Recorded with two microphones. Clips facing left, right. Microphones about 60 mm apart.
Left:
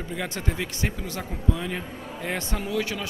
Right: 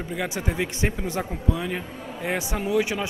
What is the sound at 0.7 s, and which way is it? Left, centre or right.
Speech, right.